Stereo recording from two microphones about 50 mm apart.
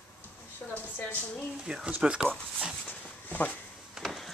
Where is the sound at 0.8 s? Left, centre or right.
Left.